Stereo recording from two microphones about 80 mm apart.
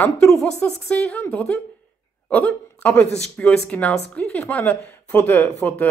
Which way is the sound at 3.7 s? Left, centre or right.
Centre.